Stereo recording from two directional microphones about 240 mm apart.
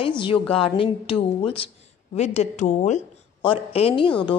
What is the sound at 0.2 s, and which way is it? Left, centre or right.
A woman's voice, left.